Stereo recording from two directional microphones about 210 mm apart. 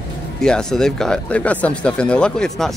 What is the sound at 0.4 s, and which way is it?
Speech, 5° left (ahead or behind).